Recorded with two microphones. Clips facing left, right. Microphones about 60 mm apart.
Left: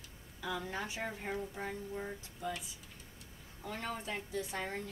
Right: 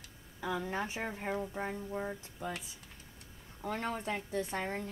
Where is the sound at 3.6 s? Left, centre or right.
Right.